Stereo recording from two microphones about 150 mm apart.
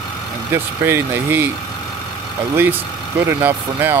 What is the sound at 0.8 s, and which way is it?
Speech, 15° right (ahead or behind).